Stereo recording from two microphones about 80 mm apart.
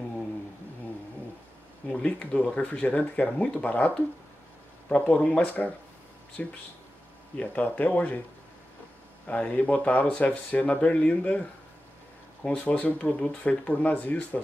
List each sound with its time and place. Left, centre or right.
1.9 s speech: centre
9.3 s speech: centre
12.4 s speech: centre